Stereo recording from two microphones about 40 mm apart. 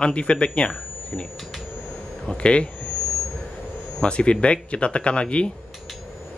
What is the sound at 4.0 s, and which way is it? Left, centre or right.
A man's voice, left.